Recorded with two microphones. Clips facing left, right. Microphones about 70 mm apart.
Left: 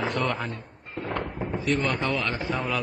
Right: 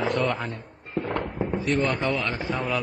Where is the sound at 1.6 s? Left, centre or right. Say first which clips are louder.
Right 1 dB; right.